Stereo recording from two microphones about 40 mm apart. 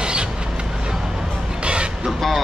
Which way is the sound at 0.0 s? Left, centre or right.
Right.